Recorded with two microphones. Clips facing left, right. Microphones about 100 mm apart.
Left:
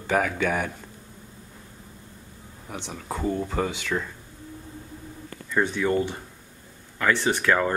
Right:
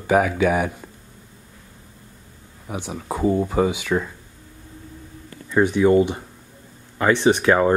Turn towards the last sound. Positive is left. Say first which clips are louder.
# right 6 dB
turn(degrees=-20)  # may be behind; listen again after turning